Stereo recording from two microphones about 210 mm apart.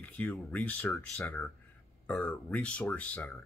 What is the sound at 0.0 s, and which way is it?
Speech, 10° left (ahead or behind).